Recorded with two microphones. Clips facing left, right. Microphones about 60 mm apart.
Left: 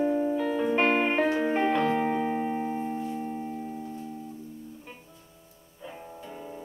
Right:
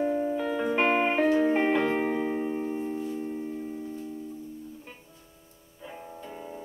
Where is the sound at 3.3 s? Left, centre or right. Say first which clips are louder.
Even; centre.